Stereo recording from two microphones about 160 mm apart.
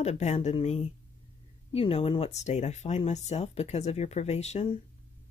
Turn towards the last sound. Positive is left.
turn(degrees=40)  # may be behind; listen again after turning